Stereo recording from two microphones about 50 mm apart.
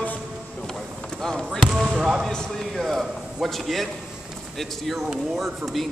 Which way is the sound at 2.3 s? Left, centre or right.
Centre.